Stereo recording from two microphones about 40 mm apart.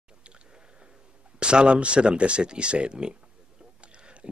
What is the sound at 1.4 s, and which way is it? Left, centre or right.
Speech, right.